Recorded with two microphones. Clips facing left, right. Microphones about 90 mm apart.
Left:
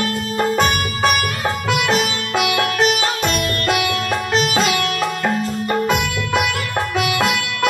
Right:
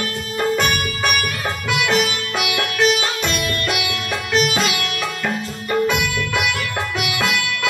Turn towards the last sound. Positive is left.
turn(degrees=40)  # may be behind; listen again after turning